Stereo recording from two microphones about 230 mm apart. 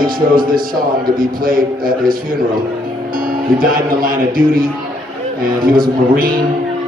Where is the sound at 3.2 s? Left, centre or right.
Right.